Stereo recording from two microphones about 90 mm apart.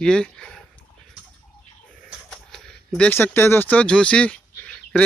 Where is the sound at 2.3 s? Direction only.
10° left (ahead or behind).